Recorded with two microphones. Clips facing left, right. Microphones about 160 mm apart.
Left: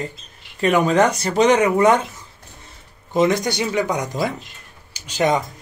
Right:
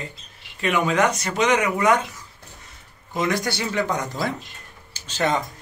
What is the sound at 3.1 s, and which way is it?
Speech, 25° left (ahead or behind).